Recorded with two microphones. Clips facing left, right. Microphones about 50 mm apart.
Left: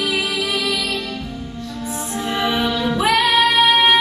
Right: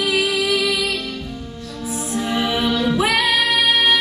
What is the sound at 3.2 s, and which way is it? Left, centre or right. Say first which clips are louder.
Music: left 3 dB; left.